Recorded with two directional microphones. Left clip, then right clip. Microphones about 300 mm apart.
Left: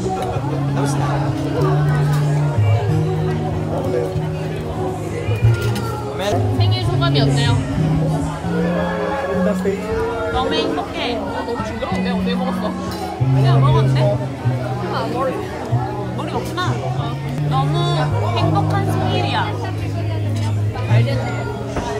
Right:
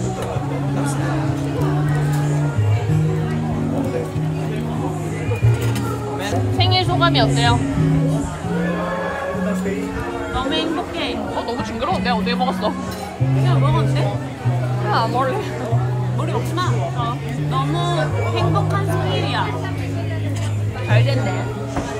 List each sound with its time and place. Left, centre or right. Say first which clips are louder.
6.6 s music: right 5 dB; right
10.3 s a sound: even; centre
12.0 s music: right 2 dB; right
13.5 s music: left 3 dB; centre
17.5 s music: left 1 dB; centre